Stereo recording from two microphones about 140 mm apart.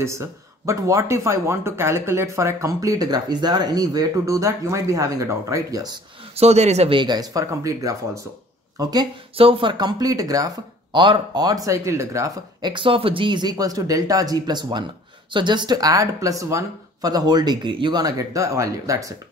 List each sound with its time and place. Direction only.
0.0 s speech: 20° right (ahead or behind)
6.3 s speech: 50° right (ahead or behind); by 8.9 s 25° right (ahead or behind)
9.4 s speech: 40° right (ahead or behind); by 12.7 s 20° right (ahead or behind)
12.7 s speech: 40° right (ahead or behind); by 19.1 s 25° right (ahead or behind)